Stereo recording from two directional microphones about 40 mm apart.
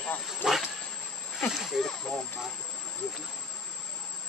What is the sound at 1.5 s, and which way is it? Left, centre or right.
Snake, centre.